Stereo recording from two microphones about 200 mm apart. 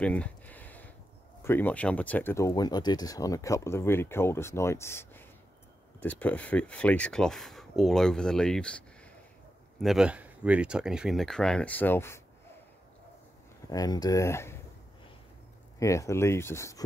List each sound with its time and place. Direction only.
0.0 s a sound: 5° left (ahead or behind)
1.4 s speech: 10° left (ahead or behind)
13.7 s speech: 20° left (ahead or behind)
15.8 s speech: 15° left (ahead or behind)